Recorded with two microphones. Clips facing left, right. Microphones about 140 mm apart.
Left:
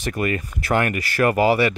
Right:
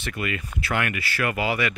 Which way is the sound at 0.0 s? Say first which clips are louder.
Left 6 dB; 40° left (ahead or behind).